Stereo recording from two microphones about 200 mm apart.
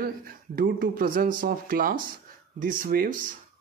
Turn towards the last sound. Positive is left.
turn(degrees=-45)  # may be behind; listen again after turning